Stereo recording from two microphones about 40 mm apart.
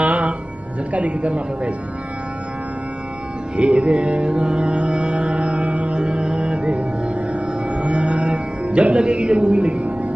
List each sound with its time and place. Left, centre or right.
0.0 s music: right
0.9 s speech: right
3.5 s music: right